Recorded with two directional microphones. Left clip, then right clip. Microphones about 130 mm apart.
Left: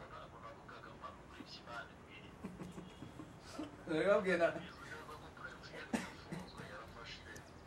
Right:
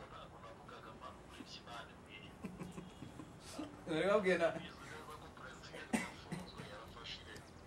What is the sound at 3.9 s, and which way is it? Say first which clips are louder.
Speech: left 1 dB; 20° right (ahead or behind).